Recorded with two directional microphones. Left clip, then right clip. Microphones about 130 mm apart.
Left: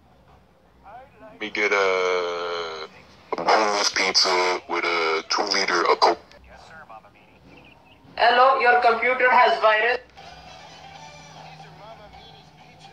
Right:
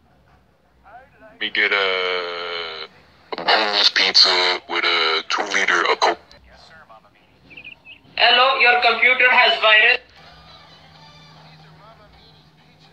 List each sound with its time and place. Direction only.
1.4 s speech: 20° left (ahead or behind)
3.3 s fart: 5° right (ahead or behind)
4.5 s speech: 5° right (ahead or behind)
8.2 s a man's voice: 10° left (ahead or behind)
10.3 s music: 30° left (ahead or behind)